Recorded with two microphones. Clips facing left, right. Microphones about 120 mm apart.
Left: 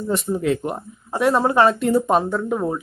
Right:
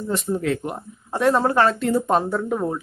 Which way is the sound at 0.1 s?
15° left (ahead or behind).